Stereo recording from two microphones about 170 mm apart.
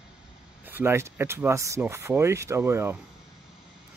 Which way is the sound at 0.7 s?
10° right (ahead or behind).